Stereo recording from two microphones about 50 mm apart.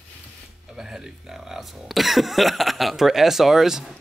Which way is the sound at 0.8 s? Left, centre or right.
Centre.